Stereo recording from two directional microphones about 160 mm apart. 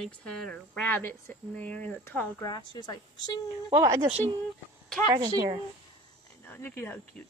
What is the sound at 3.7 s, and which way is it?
Speech, 20° right (ahead or behind).